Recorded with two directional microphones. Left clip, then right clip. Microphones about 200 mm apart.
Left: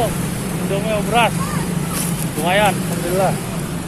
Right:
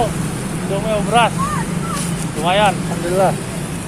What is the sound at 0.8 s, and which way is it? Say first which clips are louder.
Speech: right 2 dB; 15° right (ahead or behind).